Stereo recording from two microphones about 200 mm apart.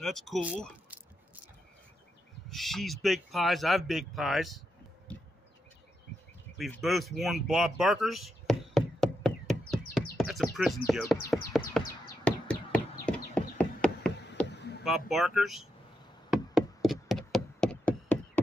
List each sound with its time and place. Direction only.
0.0 s speech: centre (ahead or behind)
0.8 s squish: 10° right (ahead or behind)
2.5 s speech: centre (ahead or behind)
6.6 s a sound: centre (ahead or behind)
10.1 s bird: centre (ahead or behind)
10.9 s speech: centre (ahead or behind)
11.7 s bird: centre (ahead or behind)
12.3 s a sound: 5° left (ahead or behind)
14.5 s a sound: 55° left (ahead or behind)
14.9 s speech: centre (ahead or behind)
16.3 s knock: centre (ahead or behind)